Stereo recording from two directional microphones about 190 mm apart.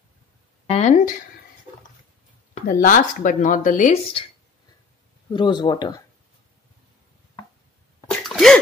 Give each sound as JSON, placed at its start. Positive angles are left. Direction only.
{"t": 0.7, "sound": "speech", "side_deg": 35}
{"t": 2.5, "sound": "speech", "side_deg": 45}
{"t": 5.3, "sound": "speech", "side_deg": 25}
{"t": 8.3, "sound": "sneeze", "side_deg": 5}